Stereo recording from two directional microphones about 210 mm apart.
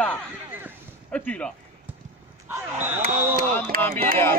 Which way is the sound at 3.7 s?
40° right (ahead or behind).